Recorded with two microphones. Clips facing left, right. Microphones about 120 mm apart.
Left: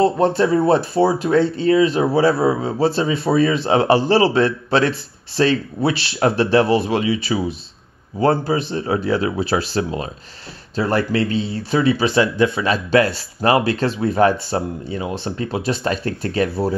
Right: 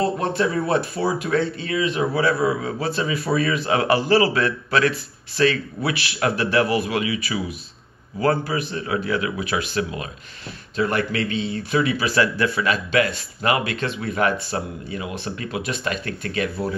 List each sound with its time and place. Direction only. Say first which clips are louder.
0.0 s speech: left 6 dB; 30° left (ahead or behind)